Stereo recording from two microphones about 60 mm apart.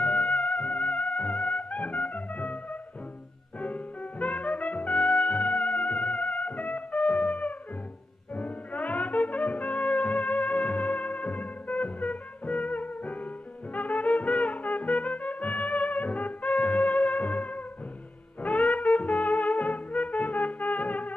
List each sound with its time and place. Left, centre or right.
0.0 s music: left
3.5 s trumpet: left
8.4 s brass instrument: left
13.7 s music: left